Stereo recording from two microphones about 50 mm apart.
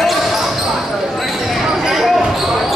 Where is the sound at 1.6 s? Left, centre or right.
Centre.